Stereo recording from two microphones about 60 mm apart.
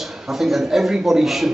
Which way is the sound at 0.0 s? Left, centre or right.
Centre.